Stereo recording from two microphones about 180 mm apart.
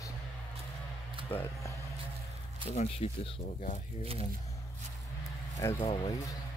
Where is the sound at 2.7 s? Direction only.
35° left (ahead or behind).